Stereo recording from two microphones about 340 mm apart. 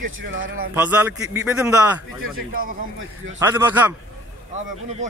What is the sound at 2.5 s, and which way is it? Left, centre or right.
Speech, right.